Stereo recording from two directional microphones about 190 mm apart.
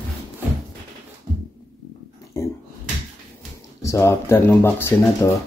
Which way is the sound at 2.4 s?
15° left (ahead or behind).